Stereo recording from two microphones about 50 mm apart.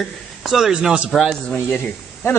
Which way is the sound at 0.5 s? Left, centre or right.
Centre.